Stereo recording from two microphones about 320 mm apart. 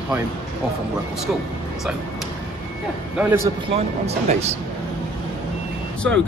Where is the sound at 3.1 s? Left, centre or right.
Centre.